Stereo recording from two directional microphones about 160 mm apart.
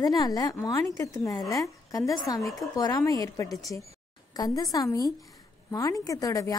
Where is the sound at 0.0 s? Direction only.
20° left (ahead or behind).